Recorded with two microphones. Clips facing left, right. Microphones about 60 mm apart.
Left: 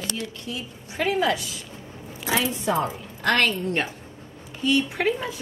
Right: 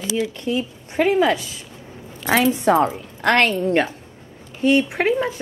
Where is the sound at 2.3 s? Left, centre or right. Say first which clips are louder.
Right 8 dB; right.